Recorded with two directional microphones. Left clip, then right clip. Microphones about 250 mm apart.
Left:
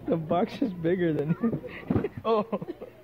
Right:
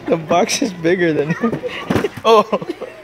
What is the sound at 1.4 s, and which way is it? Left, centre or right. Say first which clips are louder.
Speech: right 11 dB; right.